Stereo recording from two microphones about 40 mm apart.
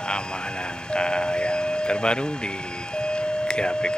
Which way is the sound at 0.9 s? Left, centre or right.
Left.